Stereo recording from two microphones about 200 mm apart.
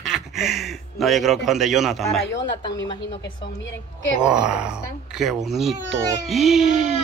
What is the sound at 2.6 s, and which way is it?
Speech, 20° left (ahead or behind).